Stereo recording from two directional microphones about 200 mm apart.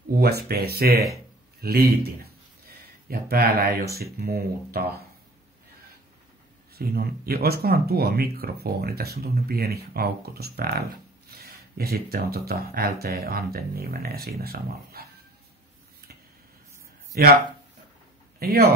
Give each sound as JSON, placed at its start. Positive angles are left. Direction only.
{"t": 0.2, "sound": "a man's voice", "side_deg": -50}
{"t": 3.1, "sound": "speech", "side_deg": -50}
{"t": 6.7, "sound": "speech", "side_deg": -50}
{"t": 17.1, "sound": "speech", "side_deg": -50}
{"t": 18.4, "sound": "speech", "side_deg": -50}